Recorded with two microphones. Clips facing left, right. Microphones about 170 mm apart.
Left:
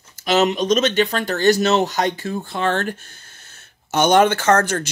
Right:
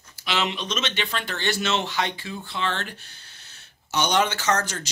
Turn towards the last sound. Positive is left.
turn(degrees=55)  # may be behind; listen again after turning